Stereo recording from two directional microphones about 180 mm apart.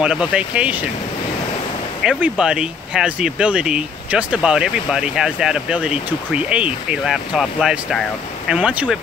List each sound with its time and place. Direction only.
0.0 s speech: 5° right (ahead or behind)
2.0 s speech: 5° right (ahead or behind)